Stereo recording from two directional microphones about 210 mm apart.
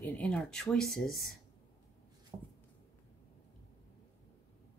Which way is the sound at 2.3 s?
20° right (ahead or behind).